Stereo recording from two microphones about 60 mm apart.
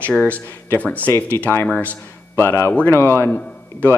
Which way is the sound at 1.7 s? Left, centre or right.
Left.